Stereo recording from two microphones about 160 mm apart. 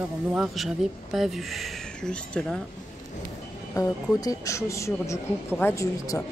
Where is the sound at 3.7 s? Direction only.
20° left (ahead or behind).